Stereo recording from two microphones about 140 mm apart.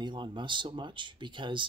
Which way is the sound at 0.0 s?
35° right (ahead or behind).